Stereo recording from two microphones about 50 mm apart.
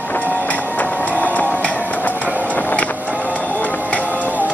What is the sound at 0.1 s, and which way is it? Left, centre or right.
Music, left.